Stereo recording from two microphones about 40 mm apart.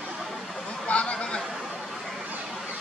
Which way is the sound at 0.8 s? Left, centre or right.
Left.